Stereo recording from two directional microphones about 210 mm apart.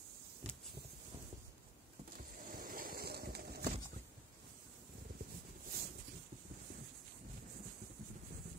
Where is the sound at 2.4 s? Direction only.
40° right (ahead or behind).